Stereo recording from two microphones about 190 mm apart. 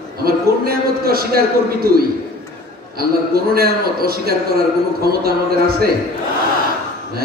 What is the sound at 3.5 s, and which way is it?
Speech, 55° right (ahead or behind).